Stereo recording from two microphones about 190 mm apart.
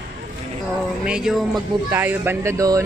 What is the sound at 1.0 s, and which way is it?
Music, 5° right (ahead or behind).